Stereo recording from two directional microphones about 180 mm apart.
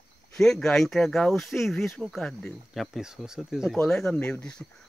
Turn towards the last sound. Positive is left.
turn(degrees=5)  # may be behind; listen again after turning